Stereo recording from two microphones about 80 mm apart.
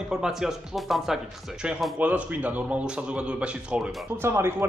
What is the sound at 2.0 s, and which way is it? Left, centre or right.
A man's voice, centre.